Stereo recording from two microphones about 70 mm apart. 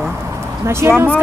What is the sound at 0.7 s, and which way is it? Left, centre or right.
Speech, right.